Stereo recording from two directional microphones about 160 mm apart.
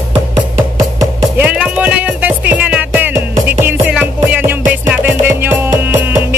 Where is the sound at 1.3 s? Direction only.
10° right (ahead or behind).